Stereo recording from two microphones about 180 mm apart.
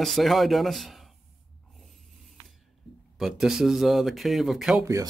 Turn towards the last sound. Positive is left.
turn(degrees=-15)  # may be behind; listen again after turning